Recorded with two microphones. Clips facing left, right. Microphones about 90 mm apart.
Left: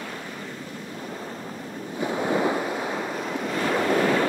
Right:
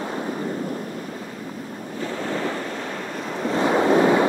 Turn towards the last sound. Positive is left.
turn(degrees=-20)  # may be behind; listen again after turning